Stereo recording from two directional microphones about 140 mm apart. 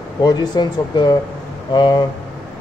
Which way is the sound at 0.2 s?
30° left (ahead or behind).